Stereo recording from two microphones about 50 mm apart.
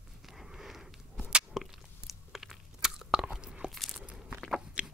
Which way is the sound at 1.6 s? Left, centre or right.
Centre.